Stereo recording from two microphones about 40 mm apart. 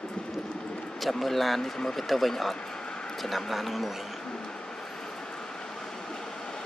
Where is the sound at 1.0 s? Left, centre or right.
Centre.